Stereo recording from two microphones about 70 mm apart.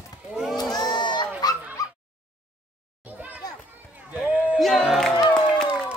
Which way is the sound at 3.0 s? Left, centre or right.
Right.